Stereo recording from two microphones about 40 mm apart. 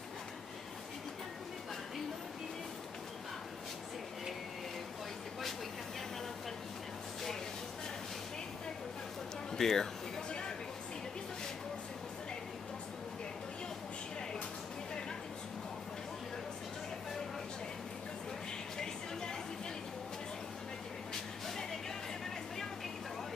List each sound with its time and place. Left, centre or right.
9.6 s speech: centre